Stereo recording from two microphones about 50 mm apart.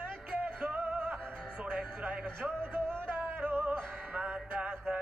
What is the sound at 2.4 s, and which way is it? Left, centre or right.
Speech, centre.